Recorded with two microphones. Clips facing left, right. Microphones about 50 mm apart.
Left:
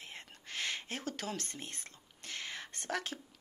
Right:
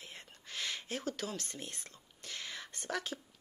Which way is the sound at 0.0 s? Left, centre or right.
Left.